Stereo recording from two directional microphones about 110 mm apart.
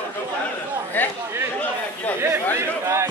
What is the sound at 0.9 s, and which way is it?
Speech, 15° left (ahead or behind).